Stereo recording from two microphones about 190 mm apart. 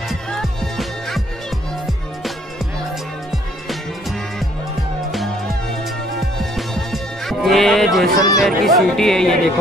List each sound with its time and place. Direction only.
0.1 s music: centre (ahead or behind)
6.1 s music: centre (ahead or behind)
8.2 s speech: 20° left (ahead or behind)
8.5 s speech: centre (ahead or behind)